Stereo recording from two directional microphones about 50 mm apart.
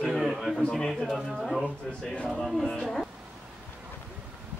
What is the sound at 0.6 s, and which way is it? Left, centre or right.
Speech, centre.